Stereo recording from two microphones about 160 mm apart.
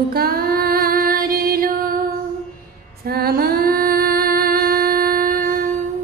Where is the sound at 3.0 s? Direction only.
70° right (ahead or behind).